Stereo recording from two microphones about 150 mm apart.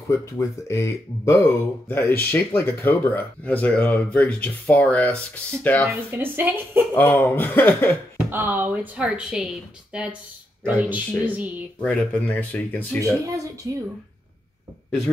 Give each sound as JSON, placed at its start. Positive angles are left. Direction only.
{"t": 0.1, "sound": "speech", "side_deg": 20}
{"t": 5.9, "sound": "speech", "side_deg": -15}
{"t": 7.0, "sound": "speech", "side_deg": 15}
{"t": 8.3, "sound": "speech", "side_deg": -15}
{"t": 11.8, "sound": "speech", "side_deg": 10}
{"t": 13.0, "sound": "speech", "side_deg": -20}